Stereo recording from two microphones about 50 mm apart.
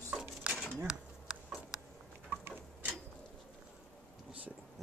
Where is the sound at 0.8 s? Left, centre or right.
Centre.